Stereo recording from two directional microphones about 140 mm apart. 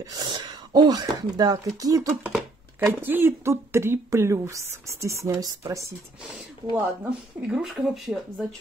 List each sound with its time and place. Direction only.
0.0 s speech: 30° right (ahead or behind)
2.3 s speech: 15° right (ahead or behind)
7.4 s speech: centre (ahead or behind)